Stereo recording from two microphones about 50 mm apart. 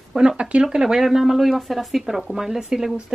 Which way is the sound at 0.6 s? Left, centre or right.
Centre.